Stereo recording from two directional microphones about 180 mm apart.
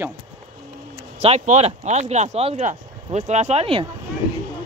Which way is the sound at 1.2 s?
35° right (ahead or behind).